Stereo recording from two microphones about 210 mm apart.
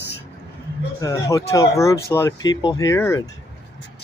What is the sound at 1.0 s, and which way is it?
Speech, 15° left (ahead or behind).